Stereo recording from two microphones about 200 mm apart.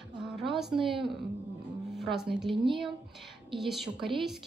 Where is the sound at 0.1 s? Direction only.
5° right (ahead or behind).